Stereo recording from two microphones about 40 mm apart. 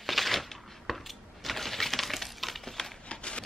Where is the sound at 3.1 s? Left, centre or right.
Left.